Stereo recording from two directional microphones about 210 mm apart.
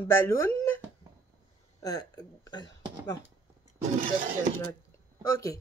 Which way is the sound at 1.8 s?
20° left (ahead or behind).